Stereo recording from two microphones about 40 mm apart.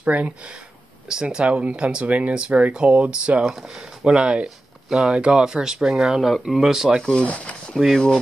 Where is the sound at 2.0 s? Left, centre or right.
Right.